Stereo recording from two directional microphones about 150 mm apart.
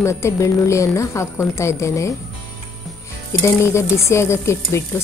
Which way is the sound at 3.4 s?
20° left (ahead or behind).